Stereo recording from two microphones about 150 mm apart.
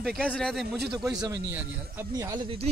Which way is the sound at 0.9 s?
25° right (ahead or behind).